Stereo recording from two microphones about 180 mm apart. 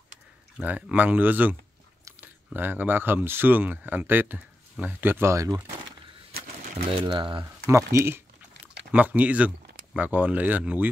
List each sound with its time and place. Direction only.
0.6 s speech: 10° right (ahead or behind)
6.9 s speech: 25° right (ahead or behind)
7.6 s speech: 15° right (ahead or behind)